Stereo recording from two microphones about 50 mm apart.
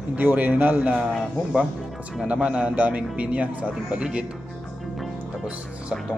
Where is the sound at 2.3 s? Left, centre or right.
Right.